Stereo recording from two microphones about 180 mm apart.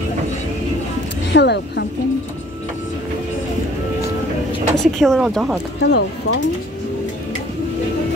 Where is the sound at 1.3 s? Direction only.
70° left (ahead or behind).